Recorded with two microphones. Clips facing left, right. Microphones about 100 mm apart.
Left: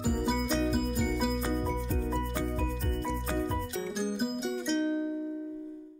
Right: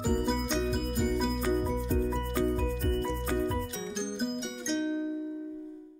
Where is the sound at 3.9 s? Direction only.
5° left (ahead or behind).